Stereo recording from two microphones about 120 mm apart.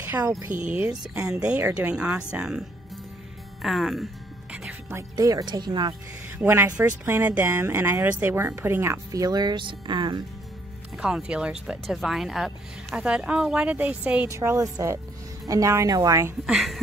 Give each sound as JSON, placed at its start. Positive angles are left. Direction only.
{"t": 0.0, "sound": "a sound", "side_deg": -15}
{"t": 0.5, "sound": "speech", "side_deg": -90}
{"t": 1.1, "sound": "speech", "side_deg": -10}
{"t": 3.6, "sound": "music", "side_deg": 0}
{"t": 4.6, "sound": "music", "side_deg": -20}
{"t": 5.1, "sound": "speech", "side_deg": -35}
{"t": 6.3, "sound": "speech", "side_deg": -20}
{"t": 11.0, "sound": "speech", "side_deg": -5}
{"t": 14.2, "sound": "speech", "side_deg": -20}
{"t": 16.4, "sound": "a woman's voice", "side_deg": 0}